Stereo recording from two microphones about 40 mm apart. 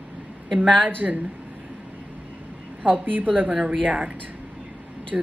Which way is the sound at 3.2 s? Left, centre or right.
Right.